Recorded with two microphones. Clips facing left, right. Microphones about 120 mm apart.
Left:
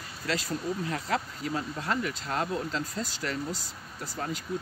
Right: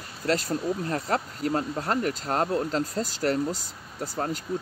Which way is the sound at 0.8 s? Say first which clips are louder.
Right 3 dB; 40° right (ahead or behind).